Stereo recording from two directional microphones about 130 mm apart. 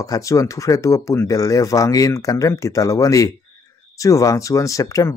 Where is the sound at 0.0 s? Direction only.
25° left (ahead or behind).